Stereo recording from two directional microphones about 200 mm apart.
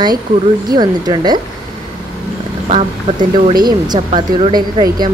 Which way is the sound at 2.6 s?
25° right (ahead or behind).